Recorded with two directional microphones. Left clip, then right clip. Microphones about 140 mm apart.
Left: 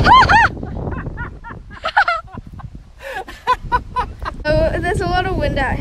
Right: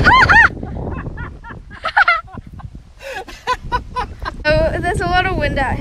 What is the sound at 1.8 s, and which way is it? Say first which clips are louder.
Fowl: right 2 dB; 10° left (ahead or behind).